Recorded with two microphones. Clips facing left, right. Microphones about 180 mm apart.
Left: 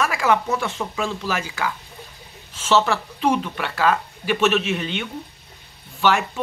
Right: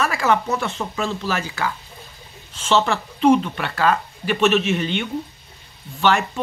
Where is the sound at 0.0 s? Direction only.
10° left (ahead or behind).